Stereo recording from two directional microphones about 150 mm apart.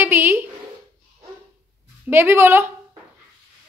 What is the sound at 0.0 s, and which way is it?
Speech, 15° right (ahead or behind).